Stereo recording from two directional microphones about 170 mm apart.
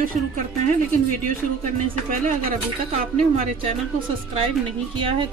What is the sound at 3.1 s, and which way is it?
Speech, 35° right (ahead or behind).